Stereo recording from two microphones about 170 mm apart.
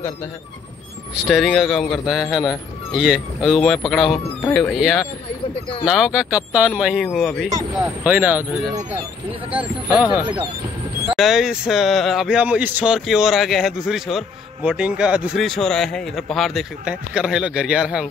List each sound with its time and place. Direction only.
1.1 s speech: 5° right (ahead or behind)
7.8 s speech: 10° right (ahead or behind)
9.5 s speech: 10° right (ahead or behind)
10.2 s speech: 25° right (ahead or behind)
11.1 s speech: centre (ahead or behind)